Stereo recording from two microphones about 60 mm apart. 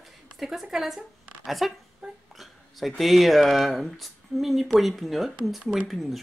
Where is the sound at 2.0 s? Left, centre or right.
Centre.